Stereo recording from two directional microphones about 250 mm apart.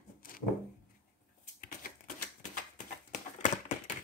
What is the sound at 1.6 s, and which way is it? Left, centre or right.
Typewriter, left.